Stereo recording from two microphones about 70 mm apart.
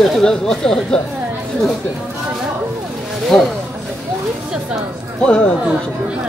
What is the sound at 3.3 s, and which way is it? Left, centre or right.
Speech, centre.